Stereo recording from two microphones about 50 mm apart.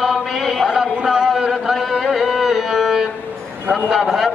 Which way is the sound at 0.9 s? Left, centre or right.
Centre.